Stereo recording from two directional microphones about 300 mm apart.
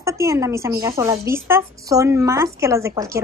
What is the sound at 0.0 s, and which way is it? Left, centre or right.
A woman's voice, centre.